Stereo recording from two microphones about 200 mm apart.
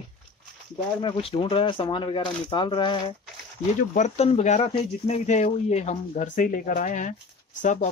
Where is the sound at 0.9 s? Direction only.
25° left (ahead or behind).